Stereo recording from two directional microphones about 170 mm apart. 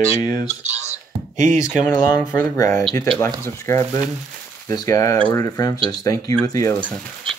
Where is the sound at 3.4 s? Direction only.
15° left (ahead or behind).